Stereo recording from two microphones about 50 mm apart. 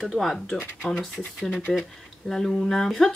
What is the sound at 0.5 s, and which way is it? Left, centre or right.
Speech, left.